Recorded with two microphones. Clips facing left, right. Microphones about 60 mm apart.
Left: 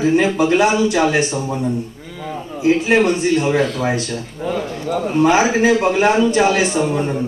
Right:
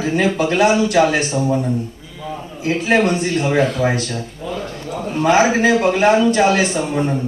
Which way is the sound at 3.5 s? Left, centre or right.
Centre.